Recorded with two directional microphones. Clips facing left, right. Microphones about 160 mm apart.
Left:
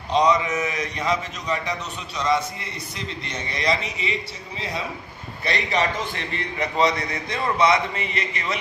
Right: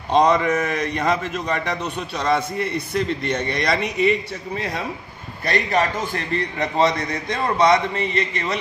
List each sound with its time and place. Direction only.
0.1 s a man's voice: 55° right (ahead or behind); by 8.5 s 40° right (ahead or behind)